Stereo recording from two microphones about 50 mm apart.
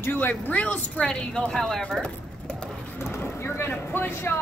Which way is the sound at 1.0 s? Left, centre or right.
Centre.